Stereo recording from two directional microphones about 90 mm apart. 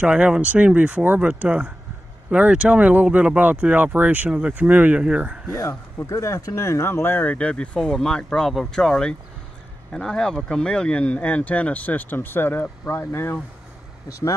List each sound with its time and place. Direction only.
0.0 s speech: 10° right (ahead or behind)
5.5 s speech: 35° left (ahead or behind)